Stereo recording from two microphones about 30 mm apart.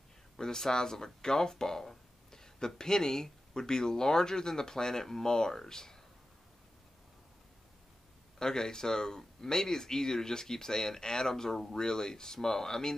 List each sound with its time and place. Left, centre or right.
0.4 s speech: centre
8.4 s speech: left